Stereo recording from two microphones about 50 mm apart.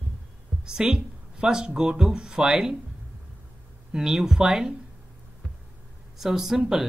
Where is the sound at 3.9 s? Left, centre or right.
Centre.